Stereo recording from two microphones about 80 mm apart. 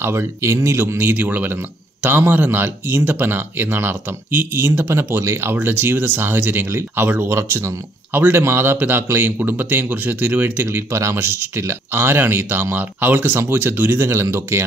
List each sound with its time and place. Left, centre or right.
0.0 s speech: right